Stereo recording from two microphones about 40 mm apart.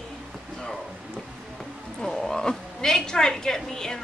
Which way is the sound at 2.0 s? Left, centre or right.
Centre.